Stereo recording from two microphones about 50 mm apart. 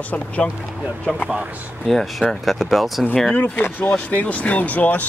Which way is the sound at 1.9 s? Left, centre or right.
Centre.